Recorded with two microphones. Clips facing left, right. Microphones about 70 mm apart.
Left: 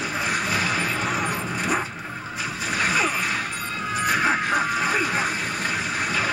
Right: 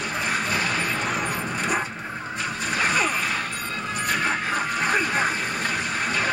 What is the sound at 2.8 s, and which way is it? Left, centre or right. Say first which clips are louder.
Music: even; centre.